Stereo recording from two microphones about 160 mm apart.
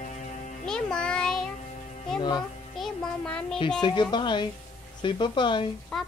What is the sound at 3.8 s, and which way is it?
Speech, 25° left (ahead or behind).